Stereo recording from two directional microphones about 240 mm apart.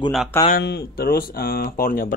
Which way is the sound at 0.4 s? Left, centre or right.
Left.